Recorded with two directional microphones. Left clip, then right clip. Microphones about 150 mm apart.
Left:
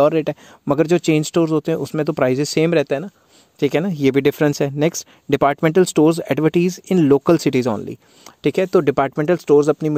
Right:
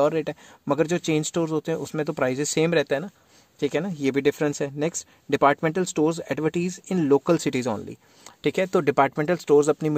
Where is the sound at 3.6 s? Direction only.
45° left (ahead or behind).